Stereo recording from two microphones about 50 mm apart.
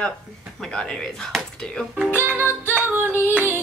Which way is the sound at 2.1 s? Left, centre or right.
Right.